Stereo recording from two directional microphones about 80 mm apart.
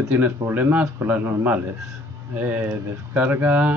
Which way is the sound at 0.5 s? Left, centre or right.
Right.